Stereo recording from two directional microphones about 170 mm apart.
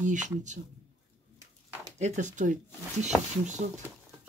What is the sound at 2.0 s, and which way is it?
Speech, 45° right (ahead or behind).